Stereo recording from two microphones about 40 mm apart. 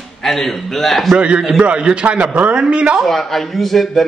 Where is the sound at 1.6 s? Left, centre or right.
Right.